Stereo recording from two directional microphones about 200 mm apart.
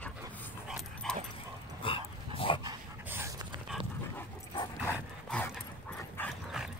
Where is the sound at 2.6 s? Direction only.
15° right (ahead or behind).